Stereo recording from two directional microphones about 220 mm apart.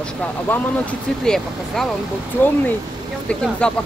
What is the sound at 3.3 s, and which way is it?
Speech, 5° left (ahead or behind).